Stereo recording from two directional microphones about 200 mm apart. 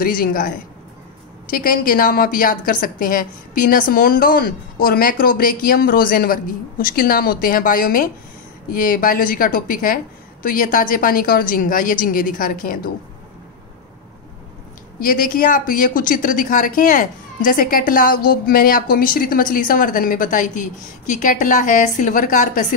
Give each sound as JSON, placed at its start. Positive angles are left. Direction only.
{"t": 0.0, "sound": "a woman's voice", "side_deg": 45}
{"t": 15.0, "sound": "a woman's voice", "side_deg": 45}